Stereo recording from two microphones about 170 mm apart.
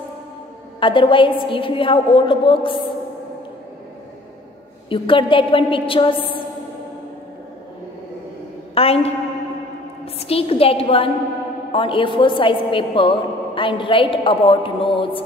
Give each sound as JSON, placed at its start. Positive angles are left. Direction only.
{"t": 0.7, "sound": "a woman's voice", "side_deg": 30}
{"t": 4.8, "sound": "a woman's voice", "side_deg": 30}
{"t": 8.7, "sound": "a woman's voice", "side_deg": 35}
{"t": 10.1, "sound": "a woman's voice", "side_deg": 35}